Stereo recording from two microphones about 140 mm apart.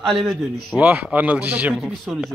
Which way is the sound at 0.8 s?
10° right (ahead or behind).